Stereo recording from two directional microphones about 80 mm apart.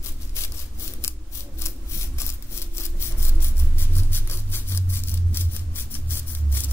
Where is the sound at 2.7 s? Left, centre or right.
Left.